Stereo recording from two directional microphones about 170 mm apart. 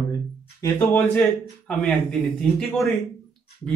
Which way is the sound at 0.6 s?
10° left (ahead or behind).